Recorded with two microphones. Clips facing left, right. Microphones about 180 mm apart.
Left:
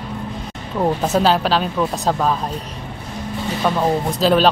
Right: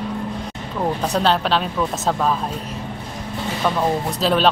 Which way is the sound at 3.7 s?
5° left (ahead or behind).